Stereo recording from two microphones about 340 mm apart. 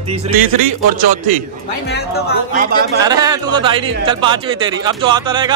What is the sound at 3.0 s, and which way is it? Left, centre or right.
Speech, centre.